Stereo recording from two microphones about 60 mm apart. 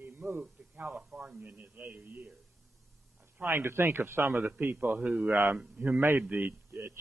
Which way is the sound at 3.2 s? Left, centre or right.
Right.